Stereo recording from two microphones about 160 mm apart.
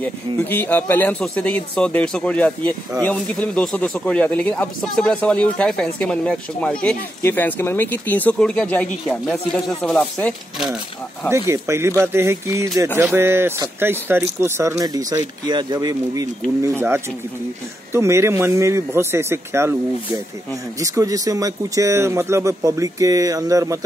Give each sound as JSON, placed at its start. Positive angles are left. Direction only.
{"t": 0.0, "sound": "speech", "side_deg": 10}
{"t": 11.2, "sound": "a man's voice", "side_deg": -15}
{"t": 17.9, "sound": "a man's voice", "side_deg": -15}
{"t": 20.8, "sound": "speech", "side_deg": -20}